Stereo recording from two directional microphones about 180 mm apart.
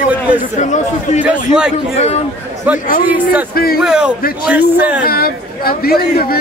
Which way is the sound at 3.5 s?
55° left (ahead or behind).